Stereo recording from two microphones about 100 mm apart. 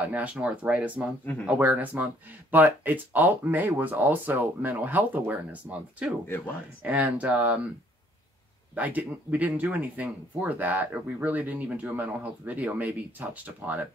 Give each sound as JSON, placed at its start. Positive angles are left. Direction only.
{"t": 0.0, "sound": "speech", "side_deg": -15}
{"t": 6.2, "sound": "speech", "side_deg": 25}
{"t": 6.8, "sound": "speech", "side_deg": -15}
{"t": 8.7, "sound": "speech", "side_deg": -15}